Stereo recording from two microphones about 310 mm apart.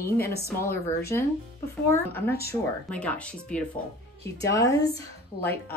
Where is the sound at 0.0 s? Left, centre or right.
Left.